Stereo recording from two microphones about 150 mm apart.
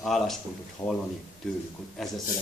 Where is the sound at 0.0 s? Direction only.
Centre (ahead or behind).